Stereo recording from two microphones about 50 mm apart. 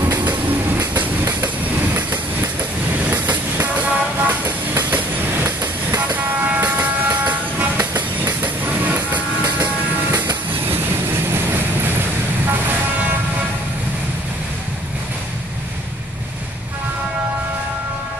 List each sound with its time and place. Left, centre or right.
3.0 s vehicle: right
4.9 s train: right
6.1 s vehicle: right
10.1 s music: right
11.2 s vehicle: right